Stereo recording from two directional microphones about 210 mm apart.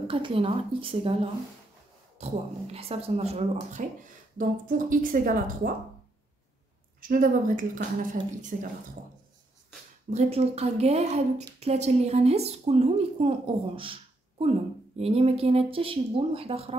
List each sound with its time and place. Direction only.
0.1 s a woman's voice: 25° right (ahead or behind); by 5.7 s 40° right (ahead or behind)
7.0 s a woman's voice: 40° right (ahead or behind)
10.0 s a woman's voice: 30° right (ahead or behind)
15.0 s speech: 30° right (ahead or behind)